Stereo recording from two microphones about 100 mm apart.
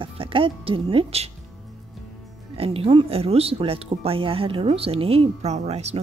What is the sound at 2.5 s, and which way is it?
Speech, 75° right (ahead or behind).